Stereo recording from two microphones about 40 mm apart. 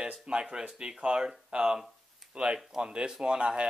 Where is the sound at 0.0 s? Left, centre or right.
Right.